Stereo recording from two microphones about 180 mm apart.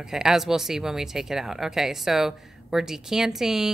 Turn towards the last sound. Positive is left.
turn(degrees=0)  # may be behind; listen again after turning